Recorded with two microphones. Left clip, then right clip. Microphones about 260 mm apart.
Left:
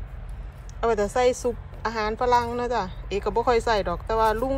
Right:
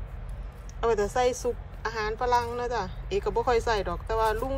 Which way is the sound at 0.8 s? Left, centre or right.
Centre.